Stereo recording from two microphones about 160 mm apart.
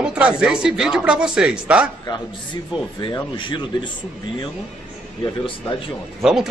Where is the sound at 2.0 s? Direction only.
30° left (ahead or behind).